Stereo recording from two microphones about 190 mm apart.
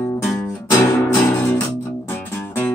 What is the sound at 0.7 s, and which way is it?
Music, 15° left (ahead or behind).